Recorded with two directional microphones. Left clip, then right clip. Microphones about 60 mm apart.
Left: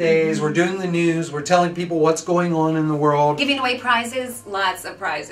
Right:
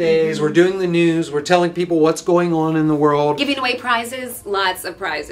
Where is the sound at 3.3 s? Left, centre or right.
Left.